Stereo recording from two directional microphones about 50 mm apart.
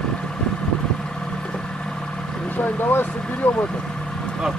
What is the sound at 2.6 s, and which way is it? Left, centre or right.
Vehicle, left.